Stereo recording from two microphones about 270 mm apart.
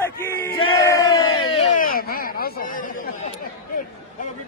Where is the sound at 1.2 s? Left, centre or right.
Left.